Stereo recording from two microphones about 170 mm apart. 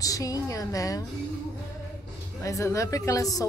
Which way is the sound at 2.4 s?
20° left (ahead or behind).